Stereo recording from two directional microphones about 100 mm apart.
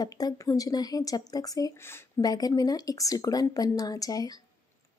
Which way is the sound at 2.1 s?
40° left (ahead or behind).